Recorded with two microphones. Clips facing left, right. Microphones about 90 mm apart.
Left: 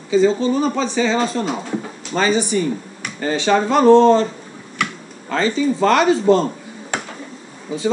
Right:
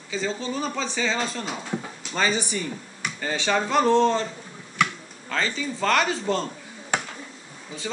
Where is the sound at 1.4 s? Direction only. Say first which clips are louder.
Left 10 dB; 35° left (ahead or behind).